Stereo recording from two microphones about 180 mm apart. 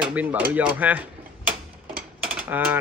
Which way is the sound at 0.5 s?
10° right (ahead or behind).